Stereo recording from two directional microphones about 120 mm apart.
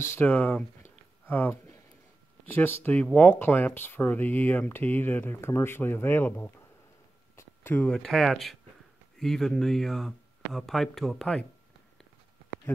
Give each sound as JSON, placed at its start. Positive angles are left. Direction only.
{"t": 0.0, "sound": "speech", "side_deg": 20}
{"t": 1.2, "sound": "a sound", "side_deg": 15}
{"t": 2.4, "sound": "speech", "side_deg": 15}